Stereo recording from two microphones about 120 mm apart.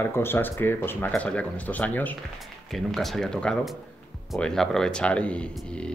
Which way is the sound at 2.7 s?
Centre (ahead or behind).